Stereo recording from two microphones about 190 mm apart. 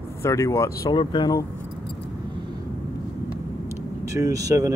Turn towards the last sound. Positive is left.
turn(degrees=-15)  # may be behind; listen again after turning